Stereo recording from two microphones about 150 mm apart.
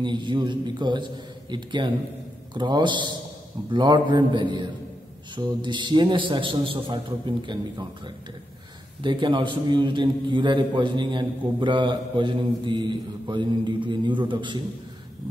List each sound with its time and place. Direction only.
0.0 s a man's voice: 30° right (ahead or behind)
9.0 s a man's voice: 30° right (ahead or behind)